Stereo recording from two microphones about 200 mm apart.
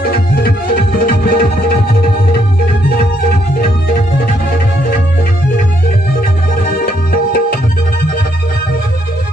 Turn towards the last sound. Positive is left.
turn(degrees=50)  # may be behind; listen again after turning